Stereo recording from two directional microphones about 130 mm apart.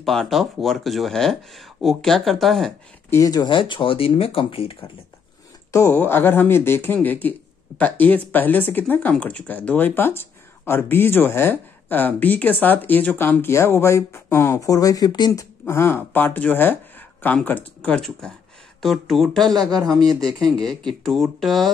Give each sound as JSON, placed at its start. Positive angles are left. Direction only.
{"t": 0.0, "sound": "speech", "side_deg": 5}
{"t": 3.1, "sound": "speech", "side_deg": 25}
{"t": 5.7, "sound": "speech", "side_deg": 20}
{"t": 15.6, "sound": "speech", "side_deg": 20}